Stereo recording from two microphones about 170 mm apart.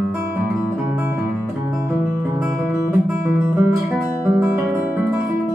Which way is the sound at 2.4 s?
15° right (ahead or behind).